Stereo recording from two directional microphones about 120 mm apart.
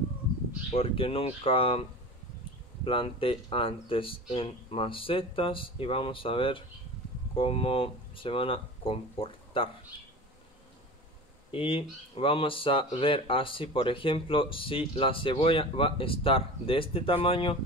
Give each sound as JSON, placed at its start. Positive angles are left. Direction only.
{"t": 0.7, "sound": "speech", "side_deg": 50}
{"t": 11.5, "sound": "speech", "side_deg": 50}